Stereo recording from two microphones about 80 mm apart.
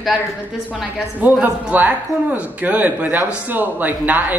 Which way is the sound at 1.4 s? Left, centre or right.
Right.